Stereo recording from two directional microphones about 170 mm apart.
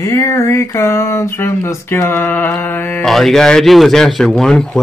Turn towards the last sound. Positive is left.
turn(degrees=5)  # may be behind; listen again after turning